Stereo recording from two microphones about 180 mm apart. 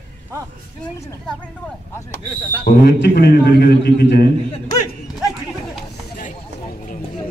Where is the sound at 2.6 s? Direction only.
60° left (ahead or behind).